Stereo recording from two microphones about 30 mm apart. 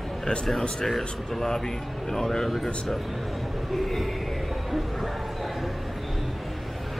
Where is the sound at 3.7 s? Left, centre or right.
Centre.